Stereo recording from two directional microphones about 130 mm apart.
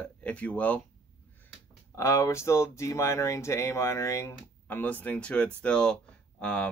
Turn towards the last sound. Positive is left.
turn(degrees=10)  # may be behind; listen again after turning